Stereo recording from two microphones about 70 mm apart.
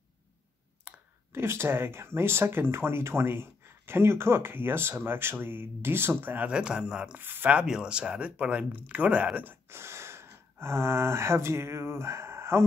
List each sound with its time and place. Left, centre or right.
0.9 s clicking: centre
1.3 s speech: right; by 7.2 s centre
7.2 s speech: right
7.5 s speech: centre
9.4 s speech: right